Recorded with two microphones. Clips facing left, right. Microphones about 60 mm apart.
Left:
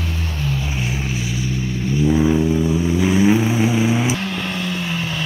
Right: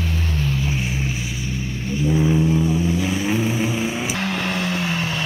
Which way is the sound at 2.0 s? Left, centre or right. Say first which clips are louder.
Left 2 dB; centre.